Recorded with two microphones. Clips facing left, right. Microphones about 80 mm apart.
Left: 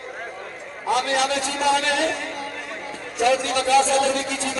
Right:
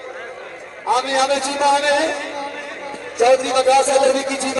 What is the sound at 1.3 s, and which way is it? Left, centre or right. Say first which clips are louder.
Speech: right 6 dB; right.